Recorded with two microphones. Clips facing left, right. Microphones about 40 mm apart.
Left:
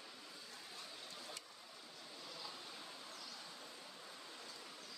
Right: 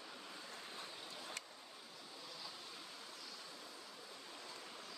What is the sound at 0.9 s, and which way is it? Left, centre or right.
Waves, centre.